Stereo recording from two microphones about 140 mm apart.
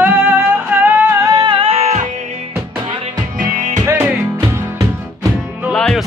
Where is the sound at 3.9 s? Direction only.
15° right (ahead or behind).